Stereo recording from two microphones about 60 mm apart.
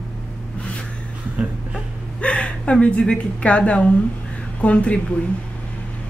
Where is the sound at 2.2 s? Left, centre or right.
Centre.